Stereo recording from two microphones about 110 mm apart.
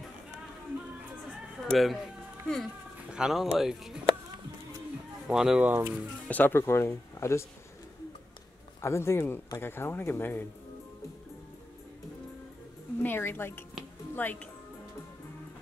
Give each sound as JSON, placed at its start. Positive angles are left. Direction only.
{"t": 1.7, "sound": "speech", "side_deg": 0}
{"t": 5.3, "sound": "speech", "side_deg": -5}
{"t": 6.2, "sound": "speech", "side_deg": 15}
{"t": 8.8, "sound": "speech", "side_deg": 25}
{"t": 13.0, "sound": "speech", "side_deg": 20}